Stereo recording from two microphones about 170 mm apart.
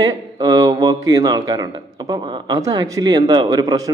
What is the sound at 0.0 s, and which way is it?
Speech, 25° right (ahead or behind).